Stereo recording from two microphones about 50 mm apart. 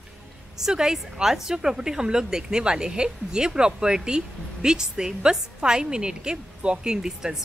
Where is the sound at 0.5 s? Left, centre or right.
Centre.